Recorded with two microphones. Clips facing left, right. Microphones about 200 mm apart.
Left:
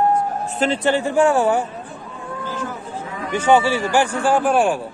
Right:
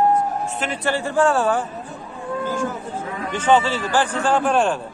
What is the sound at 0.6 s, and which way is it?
Speech, 25° left (ahead or behind).